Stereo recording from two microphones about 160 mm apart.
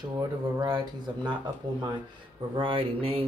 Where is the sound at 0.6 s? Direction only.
25° right (ahead or behind).